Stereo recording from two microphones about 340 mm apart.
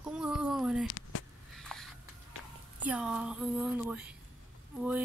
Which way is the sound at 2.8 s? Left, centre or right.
Centre.